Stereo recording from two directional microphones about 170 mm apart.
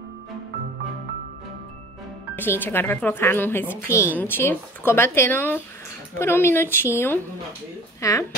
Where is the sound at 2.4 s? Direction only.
10° left (ahead or behind).